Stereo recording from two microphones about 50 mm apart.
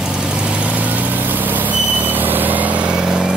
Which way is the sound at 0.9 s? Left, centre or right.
Right.